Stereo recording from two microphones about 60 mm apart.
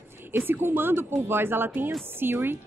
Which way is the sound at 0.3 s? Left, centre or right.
Right.